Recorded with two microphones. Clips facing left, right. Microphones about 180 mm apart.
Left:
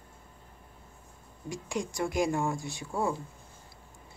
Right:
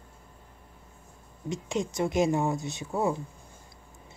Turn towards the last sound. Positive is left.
turn(degrees=-20)  # may be behind; listen again after turning